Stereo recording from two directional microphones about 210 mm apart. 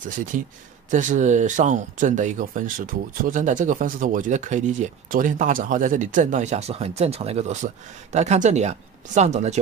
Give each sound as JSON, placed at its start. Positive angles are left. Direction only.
{"t": 0.1, "sound": "speech", "side_deg": -40}